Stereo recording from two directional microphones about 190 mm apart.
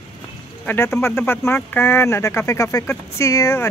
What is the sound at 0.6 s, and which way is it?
Speech, 10° left (ahead or behind).